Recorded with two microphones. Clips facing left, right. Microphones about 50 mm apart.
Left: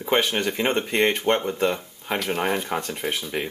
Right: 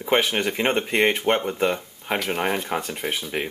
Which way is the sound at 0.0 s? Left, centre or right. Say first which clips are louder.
Right 1 dB; centre.